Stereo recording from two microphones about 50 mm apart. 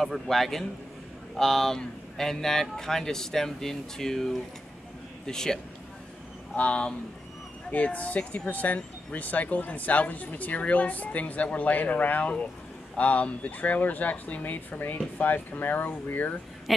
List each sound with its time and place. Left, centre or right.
0.0 s a man's voice: centre
6.5 s speech: left